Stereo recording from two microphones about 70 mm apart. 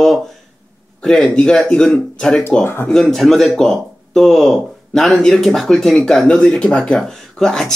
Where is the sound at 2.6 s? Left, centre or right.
Left.